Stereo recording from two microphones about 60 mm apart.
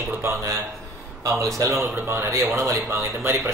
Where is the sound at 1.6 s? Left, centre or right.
Right.